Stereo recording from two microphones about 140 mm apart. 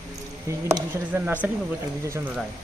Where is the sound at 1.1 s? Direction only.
10° right (ahead or behind).